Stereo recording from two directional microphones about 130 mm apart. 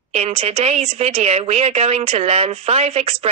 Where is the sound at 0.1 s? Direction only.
50° right (ahead or behind).